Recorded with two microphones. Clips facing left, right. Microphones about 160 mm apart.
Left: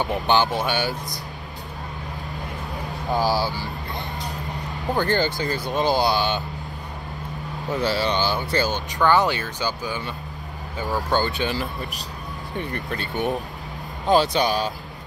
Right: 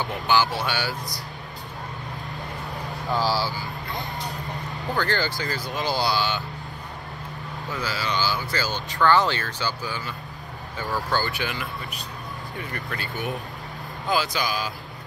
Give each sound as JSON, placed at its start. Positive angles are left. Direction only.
{"t": 0.0, "sound": "speech", "side_deg": 20}
{"t": 3.1, "sound": "speech", "side_deg": 15}
{"t": 4.8, "sound": "speech", "side_deg": 20}
{"t": 7.7, "sound": "speech", "side_deg": 25}
{"t": 11.5, "sound": "speech", "side_deg": 40}
{"t": 12.7, "sound": "speech", "side_deg": 25}